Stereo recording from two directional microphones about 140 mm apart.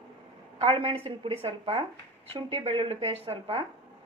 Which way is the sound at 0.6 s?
45° right (ahead or behind).